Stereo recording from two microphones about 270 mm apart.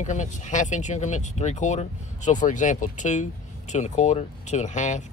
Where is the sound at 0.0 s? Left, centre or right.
Left.